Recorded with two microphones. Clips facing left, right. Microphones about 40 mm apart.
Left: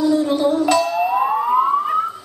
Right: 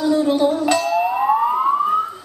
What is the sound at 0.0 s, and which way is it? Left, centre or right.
Music, right.